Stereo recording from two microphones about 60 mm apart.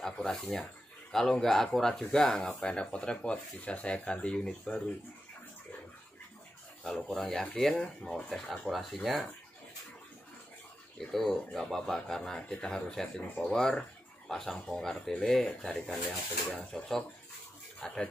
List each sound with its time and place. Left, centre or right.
0.0 s speech: centre
6.8 s speech: centre
8.7 s speech: centre
11.1 s speech: centre